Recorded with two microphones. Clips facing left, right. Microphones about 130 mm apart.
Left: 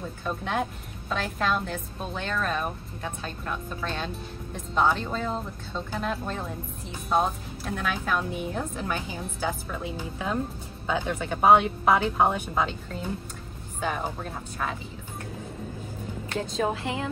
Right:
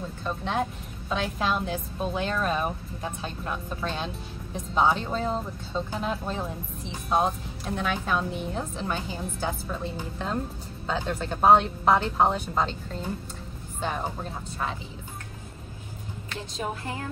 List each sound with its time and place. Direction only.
0.3 s speech: centre (ahead or behind)
16.6 s a woman's voice: 20° left (ahead or behind)